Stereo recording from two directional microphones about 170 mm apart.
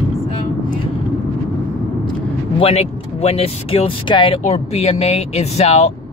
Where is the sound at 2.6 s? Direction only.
35° left (ahead or behind).